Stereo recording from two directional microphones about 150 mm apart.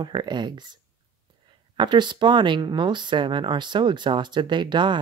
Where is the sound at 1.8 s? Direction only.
30° right (ahead or behind).